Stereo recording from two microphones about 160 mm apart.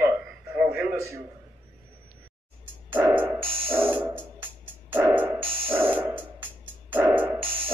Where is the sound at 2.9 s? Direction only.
10° right (ahead or behind).